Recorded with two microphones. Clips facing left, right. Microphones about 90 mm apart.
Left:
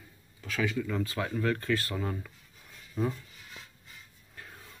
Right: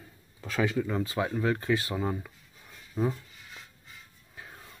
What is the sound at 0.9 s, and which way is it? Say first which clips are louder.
Speech: right 2 dB; 20° right (ahead or behind).